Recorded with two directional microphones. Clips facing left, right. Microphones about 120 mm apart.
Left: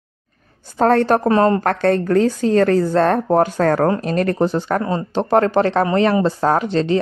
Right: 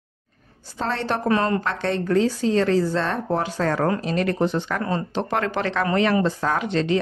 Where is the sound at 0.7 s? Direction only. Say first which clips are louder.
Left 11 dB; 50° left (ahead or behind).